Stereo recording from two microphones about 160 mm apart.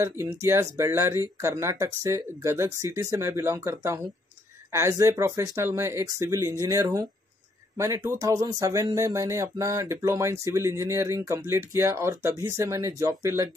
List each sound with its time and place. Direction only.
0.0 s speech: 20° right (ahead or behind)